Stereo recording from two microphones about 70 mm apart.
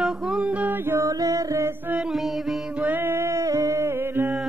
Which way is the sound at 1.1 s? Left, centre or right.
Right.